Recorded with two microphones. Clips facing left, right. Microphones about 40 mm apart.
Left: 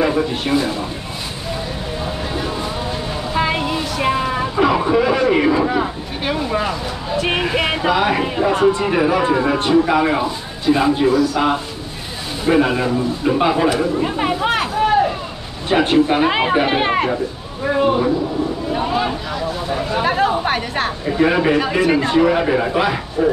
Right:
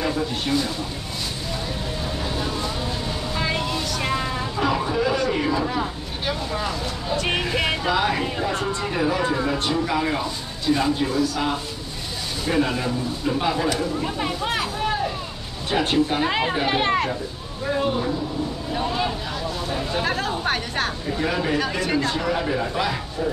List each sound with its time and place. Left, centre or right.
0.0 s speech: left
3.3 s vehicle: left
4.6 s a man's voice: left
7.1 s speech: centre
12.4 s a man's voice: left
21.2 s a man's voice: left
21.5 s speech: centre
22.1 s a man's voice: left
23.2 s speech: left